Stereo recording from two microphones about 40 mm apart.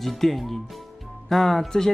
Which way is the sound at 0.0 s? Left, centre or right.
Centre.